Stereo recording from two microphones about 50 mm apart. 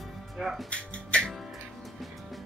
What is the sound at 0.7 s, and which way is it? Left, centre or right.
Music, left.